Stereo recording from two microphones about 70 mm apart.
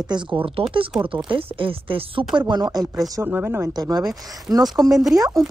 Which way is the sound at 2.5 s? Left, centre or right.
Right.